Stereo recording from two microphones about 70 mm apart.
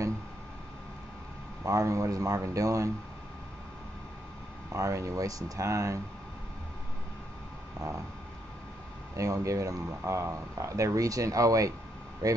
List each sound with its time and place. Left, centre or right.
1.6 s speech: right
4.7 s speech: right
9.1 s speech: right